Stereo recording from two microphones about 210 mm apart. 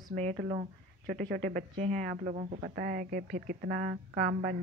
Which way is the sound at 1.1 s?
45° right (ahead or behind).